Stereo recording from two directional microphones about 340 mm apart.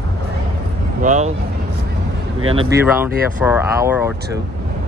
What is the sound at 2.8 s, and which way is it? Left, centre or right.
Speech, centre.